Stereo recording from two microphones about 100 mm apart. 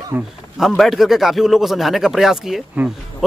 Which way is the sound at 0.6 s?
5° right (ahead or behind).